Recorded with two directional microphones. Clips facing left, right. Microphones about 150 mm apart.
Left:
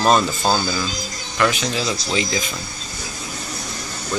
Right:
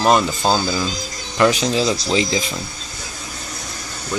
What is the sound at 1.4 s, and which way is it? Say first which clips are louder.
Speech: right 4 dB; 35° right (ahead or behind).